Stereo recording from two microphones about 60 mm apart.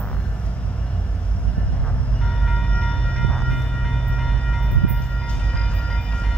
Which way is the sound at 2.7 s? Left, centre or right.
Centre.